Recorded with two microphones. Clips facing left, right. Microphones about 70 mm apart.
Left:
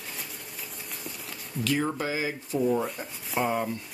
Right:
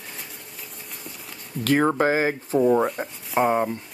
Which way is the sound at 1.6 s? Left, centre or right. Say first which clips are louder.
Right 9 dB; right.